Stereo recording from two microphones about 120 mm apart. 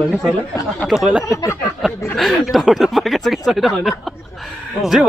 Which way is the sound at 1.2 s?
25° left (ahead or behind).